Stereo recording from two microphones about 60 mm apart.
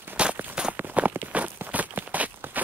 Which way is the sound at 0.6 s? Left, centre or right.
Centre.